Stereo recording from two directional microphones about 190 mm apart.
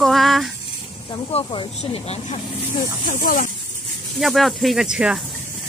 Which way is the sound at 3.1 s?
45° left (ahead or behind).